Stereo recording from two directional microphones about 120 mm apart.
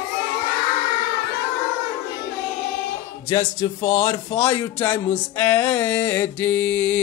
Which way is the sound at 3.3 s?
30° left (ahead or behind).